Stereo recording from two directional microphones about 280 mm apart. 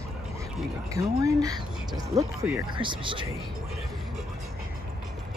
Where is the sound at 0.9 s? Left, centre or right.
Centre.